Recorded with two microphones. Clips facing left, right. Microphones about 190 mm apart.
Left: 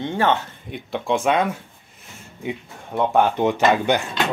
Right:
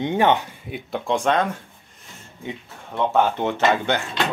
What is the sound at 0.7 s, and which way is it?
Speech, centre (ahead or behind).